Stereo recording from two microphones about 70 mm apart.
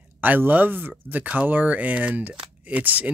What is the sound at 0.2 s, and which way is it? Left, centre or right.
Speech, right.